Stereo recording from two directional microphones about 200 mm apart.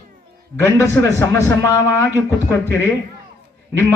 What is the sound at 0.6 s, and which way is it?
A man's voice, 15° left (ahead or behind).